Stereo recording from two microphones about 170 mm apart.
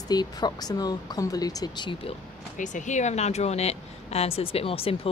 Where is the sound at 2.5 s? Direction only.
45° left (ahead or behind).